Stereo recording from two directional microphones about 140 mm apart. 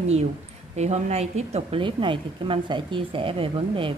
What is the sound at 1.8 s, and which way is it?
A woman's voice, 35° right (ahead or behind).